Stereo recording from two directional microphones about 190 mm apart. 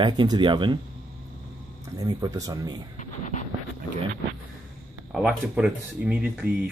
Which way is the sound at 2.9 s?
40° left (ahead or behind).